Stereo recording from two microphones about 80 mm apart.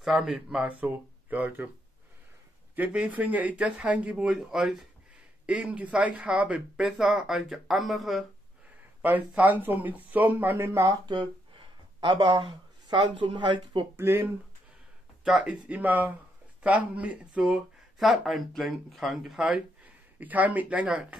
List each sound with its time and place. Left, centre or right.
0.0 s speech: centre; by 1.7 s right
2.7 s speech: centre
5.5 s speech: centre
6.8 s speech: centre
9.3 s speech: right
12.0 s speech: right
13.9 s speech: right
15.2 s speech: centre
19.8 s speech: centre